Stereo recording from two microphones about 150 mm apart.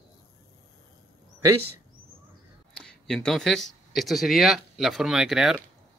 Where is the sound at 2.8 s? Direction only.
5° left (ahead or behind).